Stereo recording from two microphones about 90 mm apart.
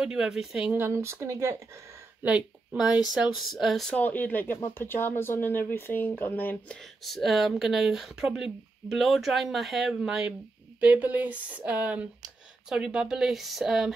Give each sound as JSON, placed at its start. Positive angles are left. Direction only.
{"t": 0.0, "sound": "speech", "side_deg": -10}
{"t": 0.7, "sound": "speech", "side_deg": -25}
{"t": 2.2, "sound": "speech", "side_deg": -15}
{"t": 3.2, "sound": "speech", "side_deg": -5}
{"t": 3.9, "sound": "speech", "side_deg": 20}
{"t": 6.8, "sound": "speech", "side_deg": 0}